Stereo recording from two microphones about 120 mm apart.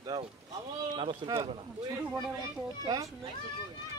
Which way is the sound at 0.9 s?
45° right (ahead or behind).